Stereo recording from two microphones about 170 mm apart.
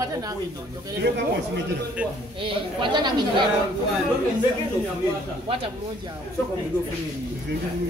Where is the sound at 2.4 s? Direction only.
30° right (ahead or behind).